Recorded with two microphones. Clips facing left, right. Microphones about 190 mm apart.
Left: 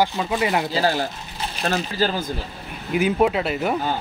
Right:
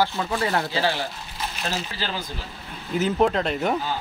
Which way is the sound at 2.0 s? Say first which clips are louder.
Left 12 dB; 45° left (ahead or behind).